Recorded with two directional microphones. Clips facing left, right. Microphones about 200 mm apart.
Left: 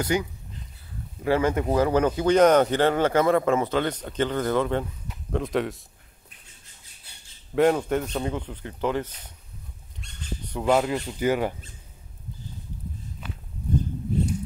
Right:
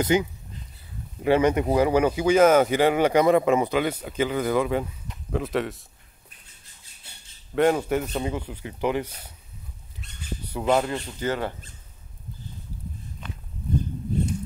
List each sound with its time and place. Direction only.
0.0 s speech: 20° right (ahead or behind); by 5.8 s centre (ahead or behind)
7.5 s speech: centre (ahead or behind)
9.9 s squawk: 5° right (ahead or behind)
10.7 s speech: 5° left (ahead or behind)
13.2 s walk: 5° left (ahead or behind)